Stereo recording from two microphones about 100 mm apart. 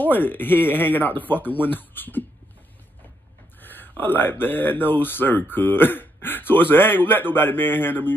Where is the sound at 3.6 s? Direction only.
20° left (ahead or behind).